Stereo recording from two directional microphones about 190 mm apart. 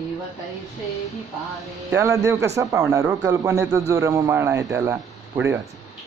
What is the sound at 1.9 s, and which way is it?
A man's voice, 15° right (ahead or behind).